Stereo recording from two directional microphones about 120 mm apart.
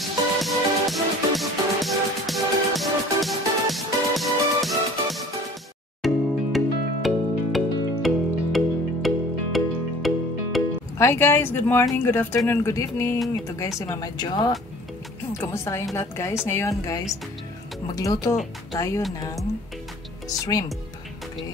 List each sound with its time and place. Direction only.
0.0 s music: centre (ahead or behind)
11.0 s a woman's voice: 20° left (ahead or behind)
15.3 s a woman's voice: 20° left (ahead or behind)
18.3 s speech: centre (ahead or behind)
18.8 s a woman's voice: 25° left (ahead or behind)
20.2 s a woman's voice: 30° left (ahead or behind)